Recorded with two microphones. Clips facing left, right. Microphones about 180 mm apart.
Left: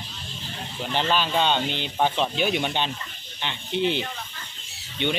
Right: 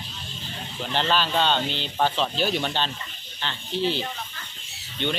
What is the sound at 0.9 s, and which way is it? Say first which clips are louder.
Speech: even; 10° left (ahead or behind).